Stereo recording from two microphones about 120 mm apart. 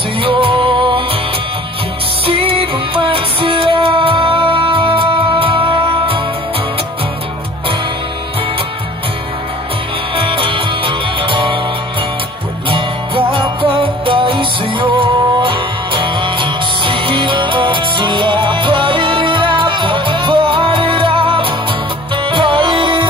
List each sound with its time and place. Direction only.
0.2 s music: 45° right (ahead or behind)
2.2 s music: 50° right (ahead or behind)
10.1 s music: 45° right (ahead or behind)
12.6 s music: 45° right (ahead or behind)